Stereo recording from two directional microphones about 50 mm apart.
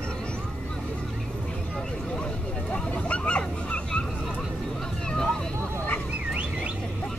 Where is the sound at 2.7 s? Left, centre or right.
Left.